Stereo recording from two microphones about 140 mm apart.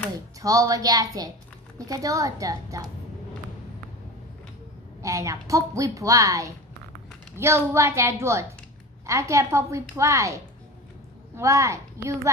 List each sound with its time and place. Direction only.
0.4 s a woman's voice: 25° right (ahead or behind)
5.0 s a woman's voice: 20° right (ahead or behind)